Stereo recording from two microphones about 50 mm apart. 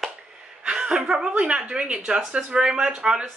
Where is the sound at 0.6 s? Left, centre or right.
Right.